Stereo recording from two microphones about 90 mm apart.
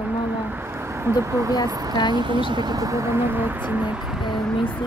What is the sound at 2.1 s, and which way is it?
Speech, 60° right (ahead or behind).